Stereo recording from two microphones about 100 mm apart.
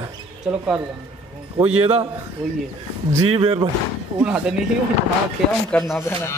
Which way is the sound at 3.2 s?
75° right (ahead or behind).